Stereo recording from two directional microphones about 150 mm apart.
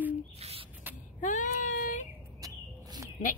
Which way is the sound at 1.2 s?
60° left (ahead or behind).